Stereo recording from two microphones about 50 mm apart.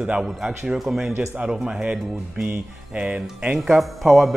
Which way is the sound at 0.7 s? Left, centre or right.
Centre.